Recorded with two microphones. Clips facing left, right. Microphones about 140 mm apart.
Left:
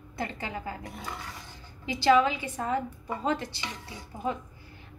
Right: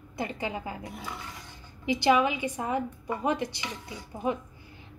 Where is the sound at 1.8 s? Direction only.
15° right (ahead or behind).